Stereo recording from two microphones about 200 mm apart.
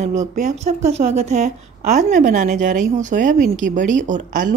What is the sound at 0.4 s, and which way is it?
Speech, 35° right (ahead or behind).